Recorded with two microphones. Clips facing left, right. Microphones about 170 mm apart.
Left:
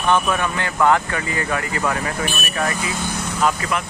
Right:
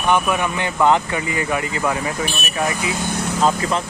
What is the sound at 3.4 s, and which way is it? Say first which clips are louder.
Speech: right 2 dB; 25° right (ahead or behind).